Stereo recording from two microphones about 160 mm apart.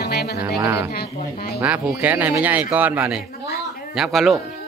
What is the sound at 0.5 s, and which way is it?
Speech, 15° right (ahead or behind).